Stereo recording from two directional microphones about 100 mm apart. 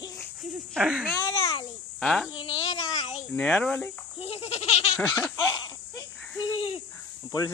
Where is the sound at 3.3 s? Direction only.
10° left (ahead or behind).